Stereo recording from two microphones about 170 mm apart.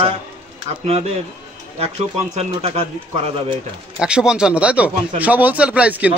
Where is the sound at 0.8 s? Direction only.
40° right (ahead or behind).